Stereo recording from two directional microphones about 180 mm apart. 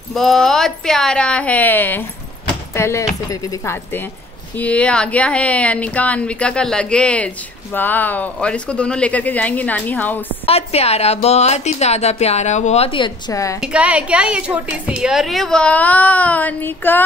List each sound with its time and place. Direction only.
0.1 s a woman's voice: centre (ahead or behind)
10.4 s a woman's voice: 35° left (ahead or behind)
13.3 s speech: 20° left (ahead or behind)
13.6 s a woman's voice: 5° right (ahead or behind); by 17.0 s 10° left (ahead or behind)